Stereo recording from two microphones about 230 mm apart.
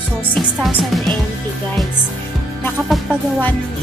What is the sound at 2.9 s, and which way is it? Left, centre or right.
Speech, centre.